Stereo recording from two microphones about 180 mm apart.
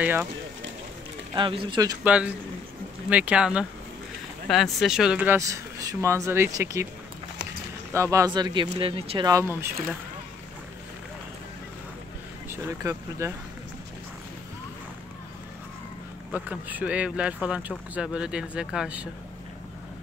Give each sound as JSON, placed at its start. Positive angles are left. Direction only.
{"t": 0.0, "sound": "speech", "side_deg": -10}
{"t": 1.3, "sound": "speech", "side_deg": -30}
{"t": 2.0, "sound": "speech", "side_deg": -5}
{"t": 7.9, "sound": "speech", "side_deg": -15}
{"t": 12.4, "sound": "speech", "side_deg": -15}
{"t": 16.3, "sound": "speech", "side_deg": -10}